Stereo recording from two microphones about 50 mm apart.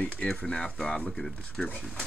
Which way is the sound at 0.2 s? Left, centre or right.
Left.